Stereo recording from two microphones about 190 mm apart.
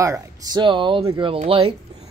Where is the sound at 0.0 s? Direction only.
20° right (ahead or behind).